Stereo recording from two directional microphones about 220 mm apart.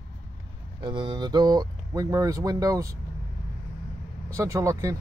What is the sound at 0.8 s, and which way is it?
Speech, 20° right (ahead or behind).